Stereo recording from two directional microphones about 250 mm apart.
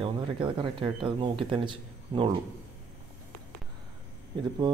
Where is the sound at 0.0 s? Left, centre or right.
Centre.